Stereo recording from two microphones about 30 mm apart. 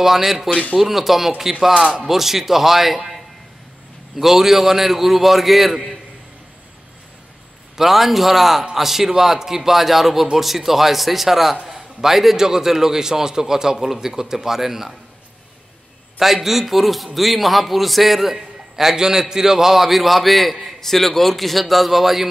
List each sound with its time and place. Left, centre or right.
0.0 s a man's voice: centre
4.2 s a man's voice: centre
7.7 s a man's voice: centre
12.4 s a man's voice: centre
16.2 s a man's voice: centre